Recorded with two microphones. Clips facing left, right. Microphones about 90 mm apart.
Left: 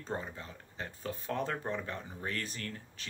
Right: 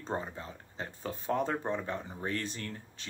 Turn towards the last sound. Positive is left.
turn(degrees=-30)  # may be behind; listen again after turning